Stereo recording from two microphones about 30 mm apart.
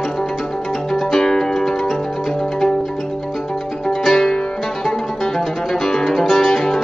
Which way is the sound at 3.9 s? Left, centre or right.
Centre.